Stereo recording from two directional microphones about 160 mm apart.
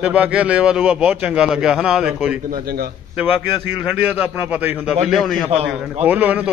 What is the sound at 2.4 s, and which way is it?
Speech, 70° right (ahead or behind).